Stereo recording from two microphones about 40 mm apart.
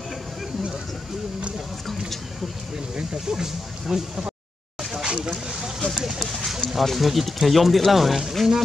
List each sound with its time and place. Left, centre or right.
3.0 s speech: centre
5.0 s a sound: right
5.9 s speech: centre